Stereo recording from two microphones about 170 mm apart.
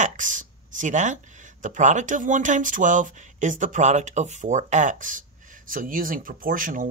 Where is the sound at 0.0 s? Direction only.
50° right (ahead or behind).